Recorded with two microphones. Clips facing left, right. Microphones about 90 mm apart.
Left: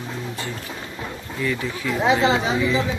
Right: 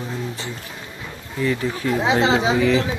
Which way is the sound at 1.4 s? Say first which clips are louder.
Right 4 dB; 40° right (ahead or behind).